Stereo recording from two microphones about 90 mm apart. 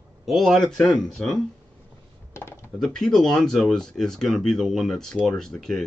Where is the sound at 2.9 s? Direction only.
5° left (ahead or behind).